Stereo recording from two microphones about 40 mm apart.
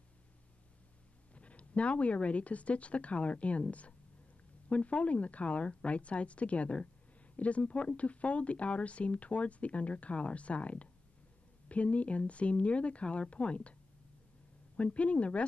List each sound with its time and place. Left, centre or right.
1.3 s speech: left
14.8 s speech: left